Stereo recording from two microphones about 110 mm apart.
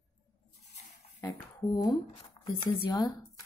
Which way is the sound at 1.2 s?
35° left (ahead or behind).